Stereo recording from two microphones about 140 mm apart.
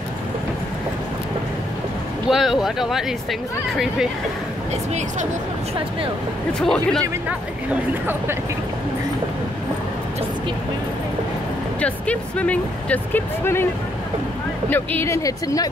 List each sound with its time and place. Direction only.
2.2 s speech: centre (ahead or behind)
6.6 s speech: 5° left (ahead or behind)
11.8 s speech: 10° left (ahead or behind)
14.7 s speech: 15° left (ahead or behind)